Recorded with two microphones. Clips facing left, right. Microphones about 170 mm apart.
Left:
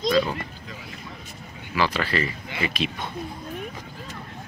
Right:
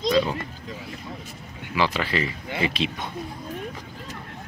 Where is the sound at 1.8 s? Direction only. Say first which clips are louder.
Even; 20° right (ahead or behind).